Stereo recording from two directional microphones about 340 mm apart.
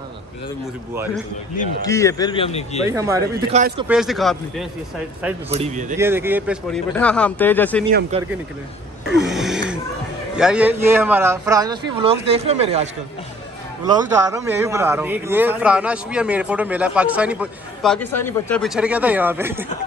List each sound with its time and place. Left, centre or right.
1.9 s speech: centre
2.9 s speech: centre
3.5 s speech: centre
3.8 s a man's voice: centre
5.5 s speech: centre
5.9 s a man's voice: centre
8.1 s speech: centre
9.0 s a sound: centre
10.3 s speech: centre
14.4 s a man's voice: centre